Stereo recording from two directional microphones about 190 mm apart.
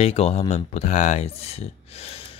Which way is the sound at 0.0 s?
30° left (ahead or behind).